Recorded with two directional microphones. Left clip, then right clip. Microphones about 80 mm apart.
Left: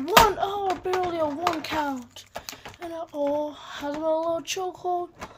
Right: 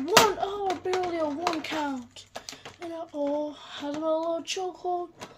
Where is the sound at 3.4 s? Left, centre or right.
Right.